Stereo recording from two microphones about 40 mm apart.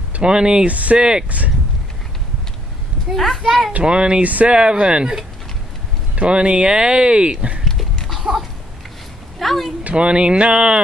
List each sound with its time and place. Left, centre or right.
0.2 s speech: right
0.7 s speech: right
0.9 s speech: right
3.1 s a child's voice: centre
3.7 s speech: right
4.6 s speech: right
6.1 s speech: right
8.2 s a sound: centre
9.4 s speech: centre
9.8 s speech: right